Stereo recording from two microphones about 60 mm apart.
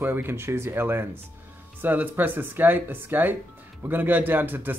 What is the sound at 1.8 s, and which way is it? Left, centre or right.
Speech, right.